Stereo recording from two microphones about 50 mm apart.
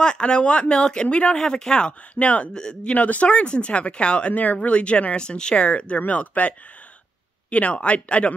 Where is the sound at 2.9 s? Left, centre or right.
Left.